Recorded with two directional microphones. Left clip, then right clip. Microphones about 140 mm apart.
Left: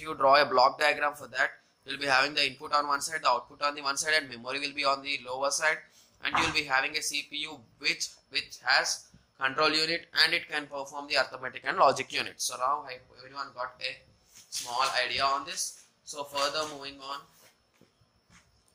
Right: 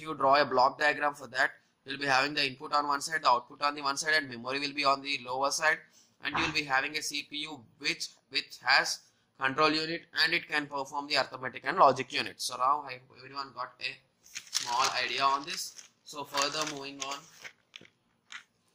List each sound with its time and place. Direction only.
0.0 s a man's voice: 30° right (ahead or behind)
9.8 s a man's voice: 25° right (ahead or behind); by 16.9 s 45° right (ahead or behind)